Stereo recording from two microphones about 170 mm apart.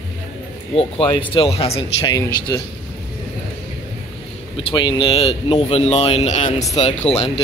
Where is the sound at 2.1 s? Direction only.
20° left (ahead or behind).